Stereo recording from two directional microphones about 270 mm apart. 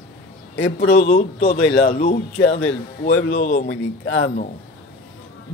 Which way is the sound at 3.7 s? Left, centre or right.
Left.